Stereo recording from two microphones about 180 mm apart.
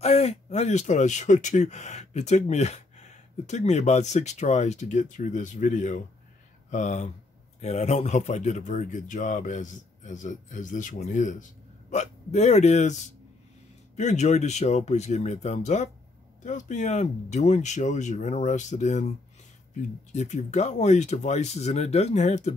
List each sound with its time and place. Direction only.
0.0 s speech: 35° left (ahead or behind)
13.9 s speech: 40° left (ahead or behind)